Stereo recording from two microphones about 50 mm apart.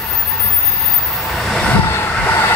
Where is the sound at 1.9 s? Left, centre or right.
Left.